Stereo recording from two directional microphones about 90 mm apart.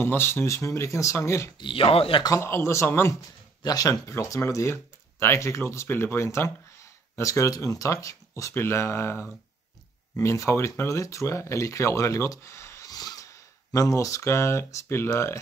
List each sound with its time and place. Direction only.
0.0 s speech: 25° left (ahead or behind)
1.6 s speech: 80° left
2.2 s speech: 30° left (ahead or behind)
3.6 s speech: 45° left (ahead or behind)
12.9 s a sound: 45° left (ahead or behind)
13.7 s speech: 35° left (ahead or behind)